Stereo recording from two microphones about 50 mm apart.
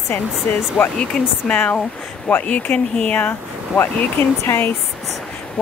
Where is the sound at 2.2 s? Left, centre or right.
Left.